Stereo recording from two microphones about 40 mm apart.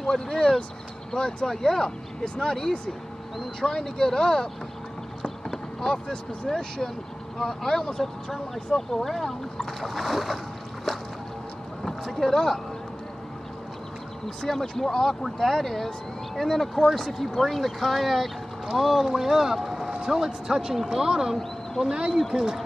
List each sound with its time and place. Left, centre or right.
0.0 s speech: centre
2.2 s speech: left
2.5 s speech: centre
11.8 s speech: centre
14.2 s a man's voice: centre